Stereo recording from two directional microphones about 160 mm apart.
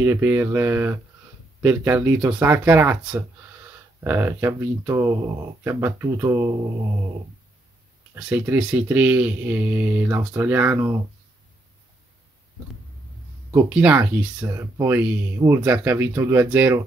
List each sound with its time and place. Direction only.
0.0 s speech: 15° right (ahead or behind)
8.1 s speech: 10° right (ahead or behind)
13.7 s speech: 5° right (ahead or behind)